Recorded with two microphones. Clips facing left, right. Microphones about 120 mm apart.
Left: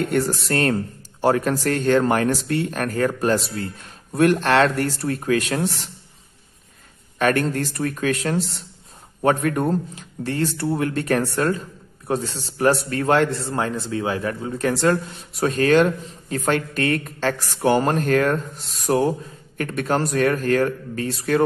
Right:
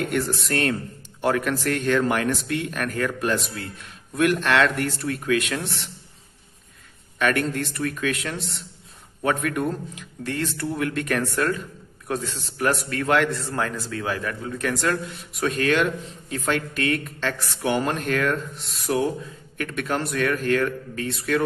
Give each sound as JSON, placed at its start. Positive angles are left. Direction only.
{"t": 0.1, "sound": "a man's voice", "side_deg": 35}
{"t": 7.2, "sound": "a man's voice", "side_deg": 40}